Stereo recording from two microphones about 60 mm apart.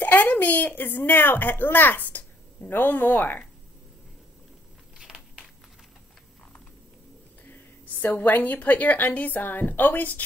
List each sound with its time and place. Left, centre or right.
0.0 s a woman's voice: left
4.9 s a sound: centre
7.5 s a woman's voice: left